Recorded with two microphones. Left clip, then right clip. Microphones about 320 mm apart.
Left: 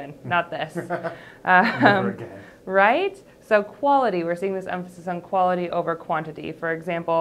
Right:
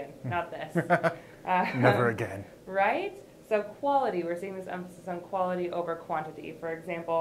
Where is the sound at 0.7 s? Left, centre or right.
Right.